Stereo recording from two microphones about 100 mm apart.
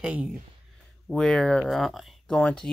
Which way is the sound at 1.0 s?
5° left (ahead or behind).